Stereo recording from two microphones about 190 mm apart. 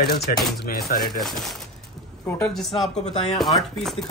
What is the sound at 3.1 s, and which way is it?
Speech, 35° left (ahead or behind).